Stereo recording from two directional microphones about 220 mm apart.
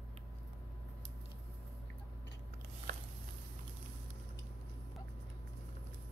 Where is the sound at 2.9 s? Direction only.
40° right (ahead or behind).